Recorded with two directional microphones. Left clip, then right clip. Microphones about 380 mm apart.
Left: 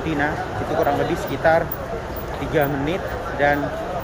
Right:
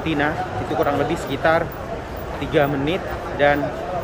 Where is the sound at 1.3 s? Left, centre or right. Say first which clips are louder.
Left 1 dB; centre.